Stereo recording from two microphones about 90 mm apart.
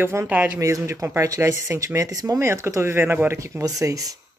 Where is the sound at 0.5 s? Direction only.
35° right (ahead or behind).